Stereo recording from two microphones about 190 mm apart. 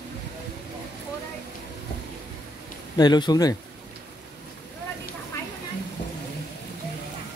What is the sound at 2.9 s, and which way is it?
Speech, 20° left (ahead or behind).